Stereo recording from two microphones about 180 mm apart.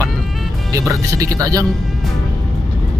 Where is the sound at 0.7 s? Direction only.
15° right (ahead or behind).